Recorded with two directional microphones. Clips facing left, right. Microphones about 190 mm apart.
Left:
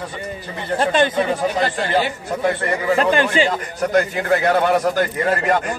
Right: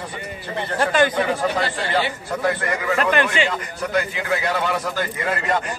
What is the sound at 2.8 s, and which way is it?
Speech, 30° left (ahead or behind).